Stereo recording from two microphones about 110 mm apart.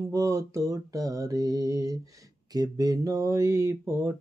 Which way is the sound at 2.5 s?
35° right (ahead or behind).